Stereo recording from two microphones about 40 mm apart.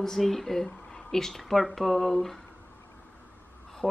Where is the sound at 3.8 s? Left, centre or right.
Right.